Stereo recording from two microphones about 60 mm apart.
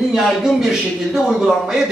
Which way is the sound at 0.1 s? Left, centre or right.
Centre.